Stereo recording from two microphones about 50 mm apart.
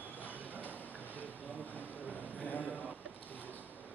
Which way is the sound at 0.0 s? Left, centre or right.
Left.